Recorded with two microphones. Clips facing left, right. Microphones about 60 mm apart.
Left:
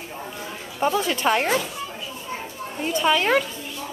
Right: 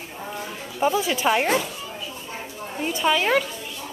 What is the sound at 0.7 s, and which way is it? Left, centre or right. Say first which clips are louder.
Speech: even; centre.